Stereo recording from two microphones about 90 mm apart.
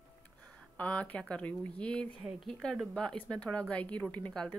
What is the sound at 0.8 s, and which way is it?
Speech, 15° left (ahead or behind).